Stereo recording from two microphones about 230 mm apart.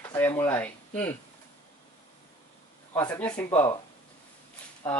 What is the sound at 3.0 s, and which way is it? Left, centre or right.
Speech, centre.